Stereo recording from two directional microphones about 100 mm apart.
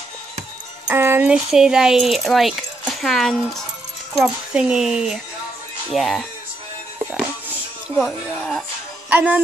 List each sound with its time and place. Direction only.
0.8 s a sound: 20° right (ahead or behind)
1.3 s speech: 5° right (ahead or behind)
8.0 s speech: 5° left (ahead or behind)
9.1 s music: 15° right (ahead or behind)